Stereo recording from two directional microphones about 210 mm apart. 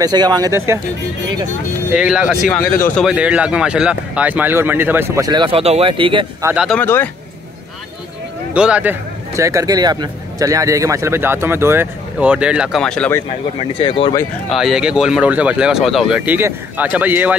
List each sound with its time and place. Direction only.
0.0 s speech: 20° right (ahead or behind)
2.0 s speech: 5° right (ahead or behind)
2.5 s speech: 10° left (ahead or behind); by 6.2 s 25° right (ahead or behind)
6.4 s speech: 5° right (ahead or behind)
6.8 s a man's voice: 10° left (ahead or behind)
8.5 s speech: 5° right (ahead or behind)
13.6 s speech: 25° left (ahead or behind)
14.5 s speech: centre (ahead or behind)